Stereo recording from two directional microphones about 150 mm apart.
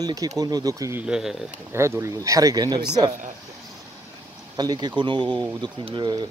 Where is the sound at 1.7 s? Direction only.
20° right (ahead or behind).